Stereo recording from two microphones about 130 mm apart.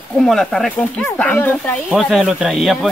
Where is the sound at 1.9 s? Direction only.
Centre (ahead or behind).